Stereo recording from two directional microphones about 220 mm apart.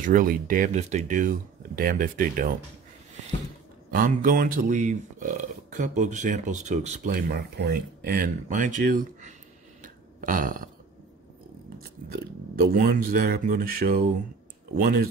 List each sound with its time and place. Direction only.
0.0 s speech: 40° right (ahead or behind)
3.9 s speech: 40° right (ahead or behind)
12.1 s speech: 45° right (ahead or behind)